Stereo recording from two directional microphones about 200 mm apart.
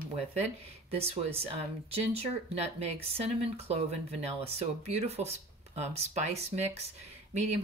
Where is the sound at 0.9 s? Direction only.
30° right (ahead or behind).